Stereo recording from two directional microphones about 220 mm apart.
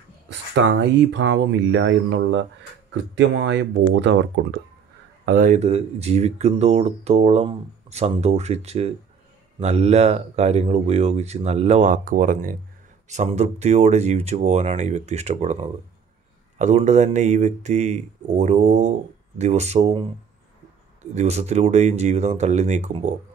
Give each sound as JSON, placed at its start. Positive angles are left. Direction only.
{"t": 0.3, "sound": "speech", "side_deg": -55}
{"t": 5.2, "sound": "speech", "side_deg": -40}
{"t": 21.1, "sound": "speech", "side_deg": -30}